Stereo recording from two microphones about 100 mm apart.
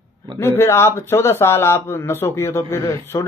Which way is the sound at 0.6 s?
25° left (ahead or behind).